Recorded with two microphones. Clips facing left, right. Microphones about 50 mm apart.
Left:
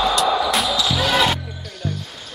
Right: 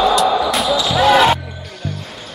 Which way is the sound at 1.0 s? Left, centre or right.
Right.